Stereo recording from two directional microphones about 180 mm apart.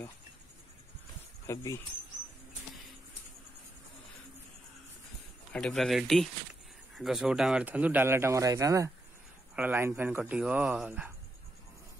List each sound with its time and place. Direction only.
1.5 s speech: 15° left (ahead or behind)
5.5 s speech: 5° left (ahead or behind)